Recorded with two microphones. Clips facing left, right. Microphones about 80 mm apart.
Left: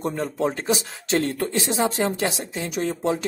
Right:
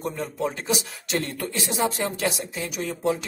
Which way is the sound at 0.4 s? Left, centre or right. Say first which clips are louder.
Left 3 dB; left.